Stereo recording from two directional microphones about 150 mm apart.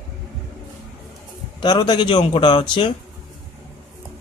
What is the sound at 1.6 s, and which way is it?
A man's voice, 30° left (ahead or behind).